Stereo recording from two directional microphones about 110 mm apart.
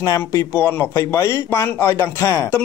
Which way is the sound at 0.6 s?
20° left (ahead or behind).